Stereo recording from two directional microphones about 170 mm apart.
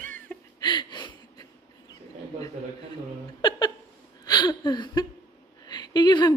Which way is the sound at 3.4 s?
25° left (ahead or behind).